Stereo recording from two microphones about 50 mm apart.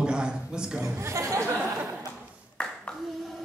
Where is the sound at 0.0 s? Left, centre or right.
Centre.